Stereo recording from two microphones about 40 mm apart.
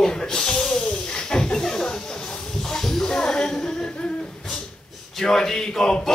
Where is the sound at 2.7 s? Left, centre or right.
Centre.